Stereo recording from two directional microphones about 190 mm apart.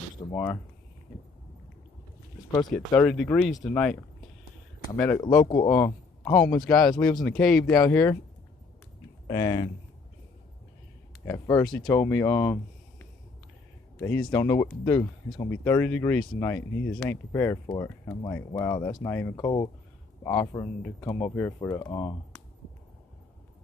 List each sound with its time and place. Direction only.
0.3 s speech: 15° left (ahead or behind)
2.7 s speech: 5° left (ahead or behind)
5.0 s speech: 20° left (ahead or behind)
7.7 s speech: 15° left (ahead or behind)
9.3 s speech: 20° left (ahead or behind)
11.2 s speech: 15° left (ahead or behind)
13.9 s speech: 10° left (ahead or behind)
19.0 s speech: 10° left (ahead or behind)
19.3 s speech: 20° left (ahead or behind)